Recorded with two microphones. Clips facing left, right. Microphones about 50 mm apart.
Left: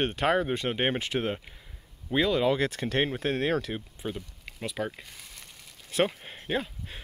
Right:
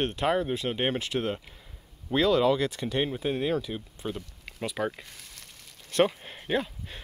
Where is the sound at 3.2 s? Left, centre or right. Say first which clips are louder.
Even; left.